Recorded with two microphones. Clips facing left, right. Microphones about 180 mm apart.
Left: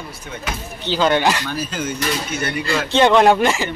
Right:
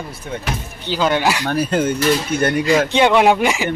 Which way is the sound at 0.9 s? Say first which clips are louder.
Left 1 dB; 5° right (ahead or behind).